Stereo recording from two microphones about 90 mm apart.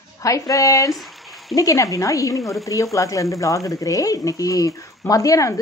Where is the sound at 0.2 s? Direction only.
40° left (ahead or behind).